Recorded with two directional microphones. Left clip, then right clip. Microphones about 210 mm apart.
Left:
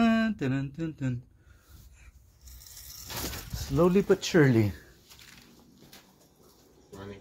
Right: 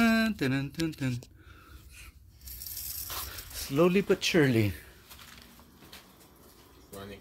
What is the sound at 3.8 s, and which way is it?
Speech, 5° right (ahead or behind).